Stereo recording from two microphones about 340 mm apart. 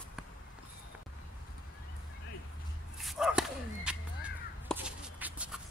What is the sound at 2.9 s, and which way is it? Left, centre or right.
Bow-wow, centre.